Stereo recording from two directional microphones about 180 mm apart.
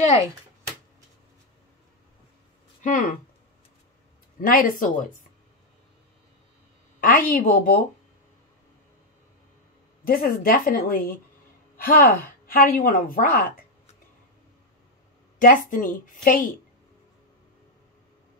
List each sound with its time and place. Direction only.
2.8 s a woman's voice: 50° left (ahead or behind)
4.4 s a woman's voice: 50° left (ahead or behind)
7.0 s a woman's voice: 50° left (ahead or behind)
10.0 s a woman's voice: 50° left (ahead or behind)
15.4 s a woman's voice: 50° left (ahead or behind)